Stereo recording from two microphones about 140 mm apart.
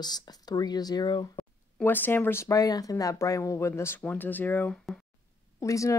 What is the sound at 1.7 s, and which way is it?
Speech, 15° left (ahead or behind).